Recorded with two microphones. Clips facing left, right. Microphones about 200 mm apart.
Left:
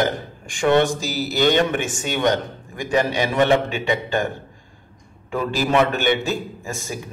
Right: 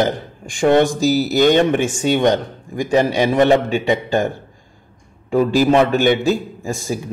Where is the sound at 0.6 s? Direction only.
40° right (ahead or behind).